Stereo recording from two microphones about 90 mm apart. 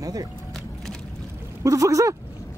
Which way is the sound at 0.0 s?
40° right (ahead or behind).